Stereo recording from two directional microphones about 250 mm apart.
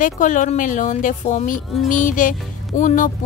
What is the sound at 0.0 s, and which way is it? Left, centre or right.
A woman's voice, left.